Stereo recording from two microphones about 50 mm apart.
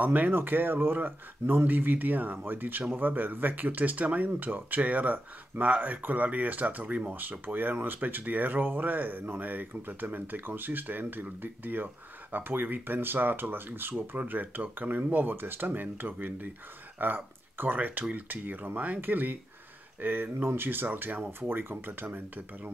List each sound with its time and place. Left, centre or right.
0.0 s speech: right